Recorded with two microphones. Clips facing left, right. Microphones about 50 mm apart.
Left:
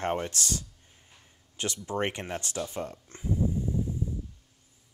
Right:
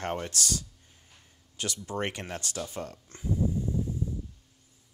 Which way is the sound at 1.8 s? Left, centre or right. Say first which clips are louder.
Left 3 dB; left.